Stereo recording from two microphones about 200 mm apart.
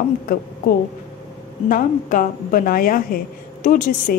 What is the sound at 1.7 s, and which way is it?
A woman's voice, 45° left (ahead or behind).